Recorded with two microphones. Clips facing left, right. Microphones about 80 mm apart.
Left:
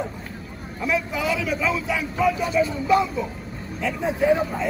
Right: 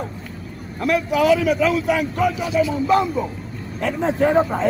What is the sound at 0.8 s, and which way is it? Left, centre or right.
Speech, right.